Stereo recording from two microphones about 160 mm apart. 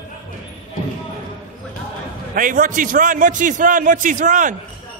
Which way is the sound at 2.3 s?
55° right (ahead or behind).